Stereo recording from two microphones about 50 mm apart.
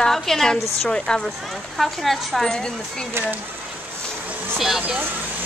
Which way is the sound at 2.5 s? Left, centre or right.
Centre.